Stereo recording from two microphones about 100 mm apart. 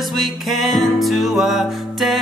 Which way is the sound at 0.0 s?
Centre (ahead or behind).